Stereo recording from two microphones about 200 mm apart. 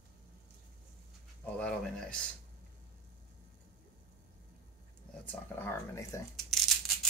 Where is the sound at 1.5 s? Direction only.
5° left (ahead or behind).